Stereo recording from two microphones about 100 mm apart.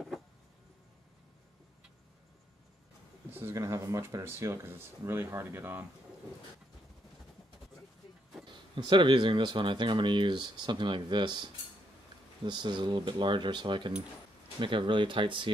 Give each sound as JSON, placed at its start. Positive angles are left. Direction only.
{"t": 3.3, "sound": "a sound", "side_deg": -20}
{"t": 3.5, "sound": "speech", "side_deg": -30}
{"t": 8.5, "sound": "speech", "side_deg": -50}